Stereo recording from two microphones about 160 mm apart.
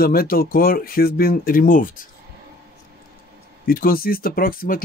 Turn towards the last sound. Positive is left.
turn(degrees=65)  # may be behind; listen again after turning